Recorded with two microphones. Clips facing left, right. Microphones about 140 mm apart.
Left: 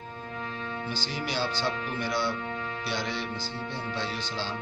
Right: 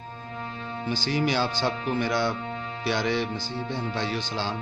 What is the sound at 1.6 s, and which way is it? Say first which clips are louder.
Speech: right 5 dB; 90° right.